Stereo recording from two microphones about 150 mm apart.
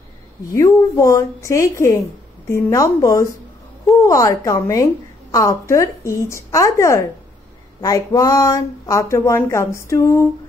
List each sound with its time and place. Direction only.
0.6 s speech: 20° left (ahead or behind)